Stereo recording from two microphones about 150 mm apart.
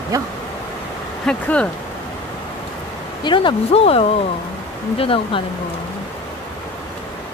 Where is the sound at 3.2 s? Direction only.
30° left (ahead or behind).